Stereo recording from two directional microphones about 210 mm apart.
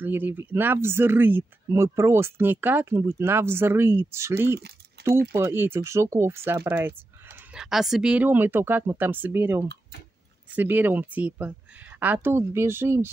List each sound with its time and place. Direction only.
0.0 s speech: 10° right (ahead or behind)
5.0 s a sound: 50° right (ahead or behind)
5.4 s speech: 10° right (ahead or behind)